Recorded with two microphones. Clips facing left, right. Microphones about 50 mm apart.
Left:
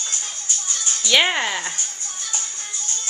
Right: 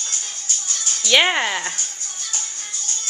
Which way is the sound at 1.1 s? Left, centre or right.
Centre.